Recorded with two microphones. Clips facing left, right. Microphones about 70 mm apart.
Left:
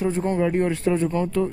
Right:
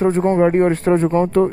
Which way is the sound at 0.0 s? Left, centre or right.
Right.